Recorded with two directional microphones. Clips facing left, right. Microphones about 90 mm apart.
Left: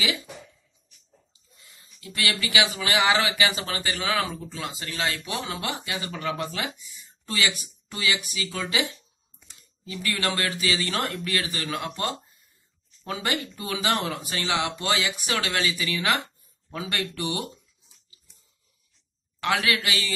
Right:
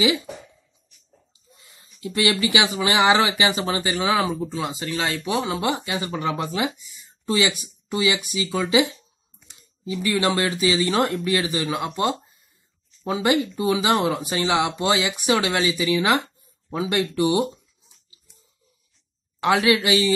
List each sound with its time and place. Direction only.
2.0 s speech: 25° right (ahead or behind)
9.8 s speech: 20° right (ahead or behind)
19.4 s speech: 20° right (ahead or behind)